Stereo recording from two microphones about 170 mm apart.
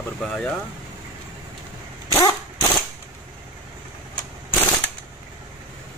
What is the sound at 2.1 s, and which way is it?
Dog, 25° left (ahead or behind).